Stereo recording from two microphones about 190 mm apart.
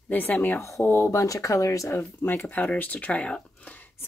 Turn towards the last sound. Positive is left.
turn(degrees=10)  # may be behind; listen again after turning